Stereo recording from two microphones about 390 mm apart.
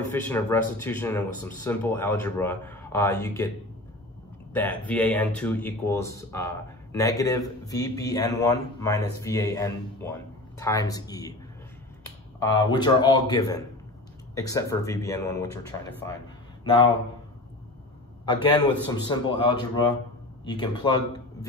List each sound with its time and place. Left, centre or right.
0.1 s speech: centre
4.6 s speech: centre
12.7 s speech: centre
16.6 s speech: centre
18.2 s a man's voice: centre